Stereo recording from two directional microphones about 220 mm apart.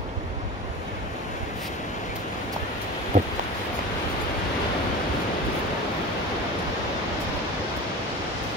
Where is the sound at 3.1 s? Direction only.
30° right (ahead or behind).